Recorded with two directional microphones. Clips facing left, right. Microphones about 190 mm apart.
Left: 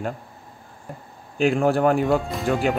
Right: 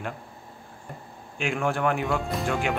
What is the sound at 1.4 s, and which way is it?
Speech, 35° left (ahead or behind).